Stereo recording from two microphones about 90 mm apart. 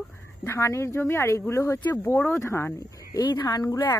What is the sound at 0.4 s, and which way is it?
Speech, 30° left (ahead or behind).